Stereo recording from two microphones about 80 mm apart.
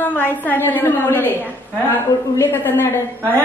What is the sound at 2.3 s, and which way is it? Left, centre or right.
A woman's voice, left.